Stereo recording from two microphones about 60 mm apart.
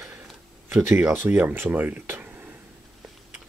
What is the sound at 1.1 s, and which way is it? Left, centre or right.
Speech, right.